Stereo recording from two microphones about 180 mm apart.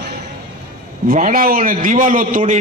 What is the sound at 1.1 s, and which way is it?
A man's voice, 45° right (ahead or behind).